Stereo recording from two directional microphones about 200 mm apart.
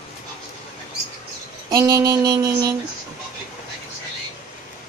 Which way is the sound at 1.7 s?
15° right (ahead or behind).